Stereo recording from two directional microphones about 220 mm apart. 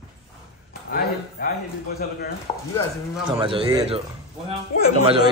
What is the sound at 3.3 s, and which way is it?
Speech, 25° right (ahead or behind).